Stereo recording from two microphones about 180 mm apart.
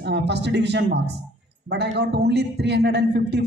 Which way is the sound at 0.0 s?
70° right (ahead or behind).